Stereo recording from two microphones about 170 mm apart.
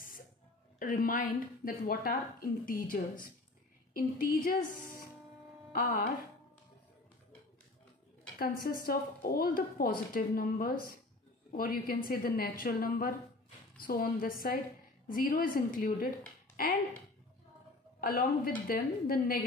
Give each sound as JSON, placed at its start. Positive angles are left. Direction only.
{"t": 0.7, "sound": "a woman's voice", "side_deg": 55}
{"t": 8.4, "sound": "a woman's voice", "side_deg": 60}
{"t": 18.0, "sound": "a woman's voice", "side_deg": 60}